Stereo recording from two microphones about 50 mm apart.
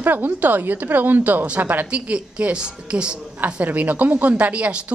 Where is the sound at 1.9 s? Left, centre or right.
Right.